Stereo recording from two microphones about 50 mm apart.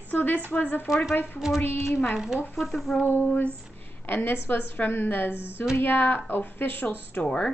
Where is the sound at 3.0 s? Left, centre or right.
Left.